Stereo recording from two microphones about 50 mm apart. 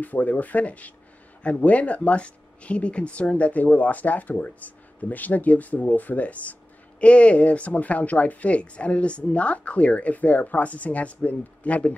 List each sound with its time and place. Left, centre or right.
0.0 s speech: left